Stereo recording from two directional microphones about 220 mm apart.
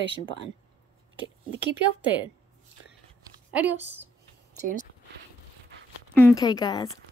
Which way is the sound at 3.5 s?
5° right (ahead or behind).